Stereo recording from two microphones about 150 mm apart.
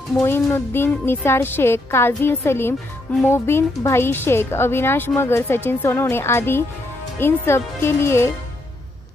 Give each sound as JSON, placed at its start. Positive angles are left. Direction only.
{"t": 0.2, "sound": "speech", "side_deg": 15}